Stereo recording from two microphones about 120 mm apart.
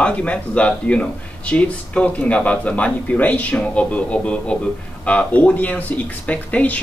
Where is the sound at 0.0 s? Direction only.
10° left (ahead or behind).